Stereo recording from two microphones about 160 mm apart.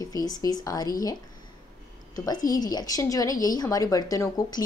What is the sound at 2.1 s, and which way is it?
A woman's voice, 25° left (ahead or behind).